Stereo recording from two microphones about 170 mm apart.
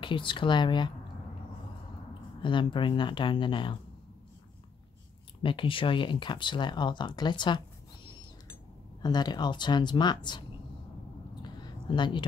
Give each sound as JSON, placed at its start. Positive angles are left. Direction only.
{"t": 0.0, "sound": "speech", "side_deg": 30}
{"t": 2.4, "sound": "speech", "side_deg": 30}
{"t": 5.4, "sound": "speech", "side_deg": 30}
{"t": 9.0, "sound": "speech", "side_deg": 25}
{"t": 11.5, "sound": "a sound", "side_deg": 25}